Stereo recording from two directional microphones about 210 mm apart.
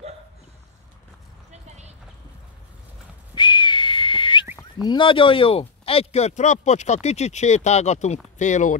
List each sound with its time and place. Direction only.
1.5 s clip-clop: 30° right (ahead or behind)
3.3 s whistling: 20° left (ahead or behind)
4.8 s speech: 25° left (ahead or behind)